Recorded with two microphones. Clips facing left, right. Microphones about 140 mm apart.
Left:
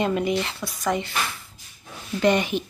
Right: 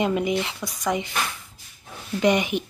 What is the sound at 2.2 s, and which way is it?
Speech, 15° right (ahead or behind).